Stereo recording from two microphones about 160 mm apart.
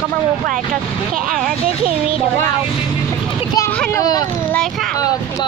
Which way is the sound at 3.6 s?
15° left (ahead or behind).